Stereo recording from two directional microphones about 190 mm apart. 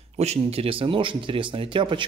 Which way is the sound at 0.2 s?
35° right (ahead or behind).